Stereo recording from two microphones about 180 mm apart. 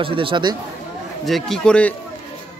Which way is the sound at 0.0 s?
30° right (ahead or behind).